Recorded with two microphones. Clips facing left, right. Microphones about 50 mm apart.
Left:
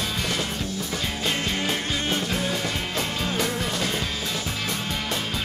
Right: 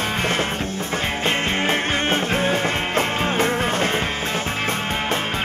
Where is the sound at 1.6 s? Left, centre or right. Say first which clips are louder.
Right 6 dB; right.